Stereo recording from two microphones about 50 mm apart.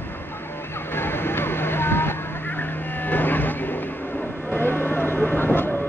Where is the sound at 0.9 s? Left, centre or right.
Left.